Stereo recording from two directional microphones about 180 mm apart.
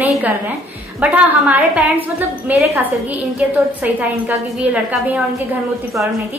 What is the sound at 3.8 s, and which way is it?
A woman's voice, 10° right (ahead or behind).